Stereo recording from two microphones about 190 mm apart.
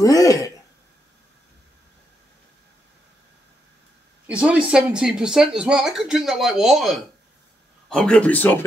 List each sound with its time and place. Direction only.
0.0 s speech: 15° left (ahead or behind)
4.3 s speech: 5° right (ahead or behind); by 8.6 s 10° left (ahead or behind)